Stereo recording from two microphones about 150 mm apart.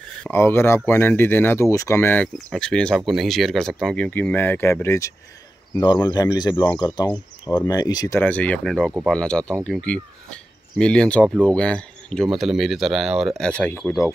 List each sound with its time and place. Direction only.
0.2 s speech: 15° left (ahead or behind)
8.2 s speech: 10° left (ahead or behind)